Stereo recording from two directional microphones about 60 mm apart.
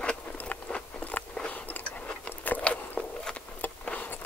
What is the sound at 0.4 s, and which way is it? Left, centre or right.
Biting, left.